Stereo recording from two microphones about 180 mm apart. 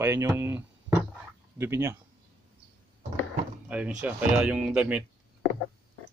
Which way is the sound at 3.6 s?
5° right (ahead or behind).